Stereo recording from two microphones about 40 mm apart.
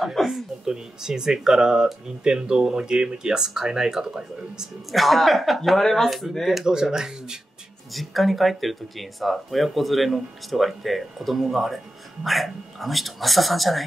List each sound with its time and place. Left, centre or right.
0.0 s speech: centre
0.7 s speech: centre
4.9 s speech: centre
6.6 s speech: centre
7.9 s speech: centre